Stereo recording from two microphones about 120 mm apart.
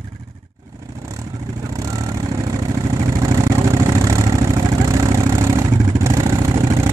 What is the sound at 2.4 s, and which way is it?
Vehicle, 30° right (ahead or behind).